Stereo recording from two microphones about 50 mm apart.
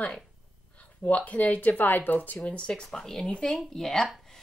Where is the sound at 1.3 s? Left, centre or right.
Left.